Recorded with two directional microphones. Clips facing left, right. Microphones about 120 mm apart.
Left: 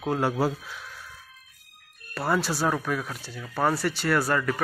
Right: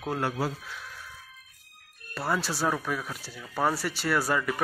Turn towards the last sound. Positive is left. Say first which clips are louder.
# left 2 dB
turn(degrees=-10)  # may be behind; listen again after turning